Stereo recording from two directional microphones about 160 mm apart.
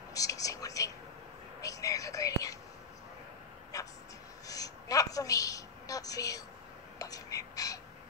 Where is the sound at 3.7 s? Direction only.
20° left (ahead or behind).